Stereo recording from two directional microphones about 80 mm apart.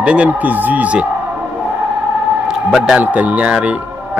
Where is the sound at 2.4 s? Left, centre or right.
Centre.